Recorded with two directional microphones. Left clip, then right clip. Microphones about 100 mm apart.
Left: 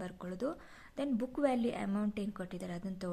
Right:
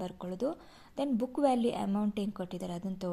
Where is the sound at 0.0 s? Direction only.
15° right (ahead or behind).